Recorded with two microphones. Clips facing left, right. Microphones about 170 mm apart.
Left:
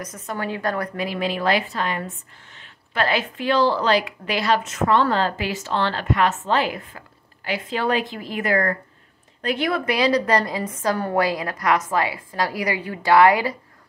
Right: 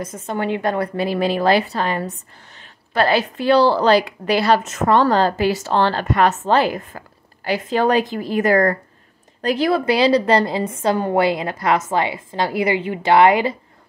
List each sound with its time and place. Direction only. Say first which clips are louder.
0.0 s a woman's voice: right 5 dB; 25° right (ahead or behind)